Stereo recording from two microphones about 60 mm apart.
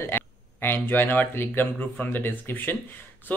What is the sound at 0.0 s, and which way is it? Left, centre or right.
Speech, left.